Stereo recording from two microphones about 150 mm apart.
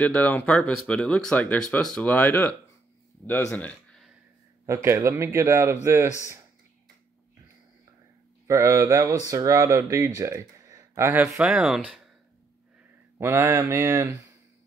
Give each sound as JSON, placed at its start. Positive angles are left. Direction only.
{"t": 0.0, "sound": "speech", "side_deg": 10}
{"t": 4.6, "sound": "a man's voice", "side_deg": -20}
{"t": 8.5, "sound": "speech", "side_deg": -20}
{"t": 11.3, "sound": "speech", "side_deg": -5}
{"t": 13.2, "sound": "a man's voice", "side_deg": -15}